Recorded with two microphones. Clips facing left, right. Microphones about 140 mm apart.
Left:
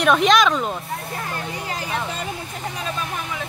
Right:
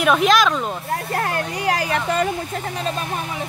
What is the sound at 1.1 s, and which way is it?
Speech, 70° right (ahead or behind).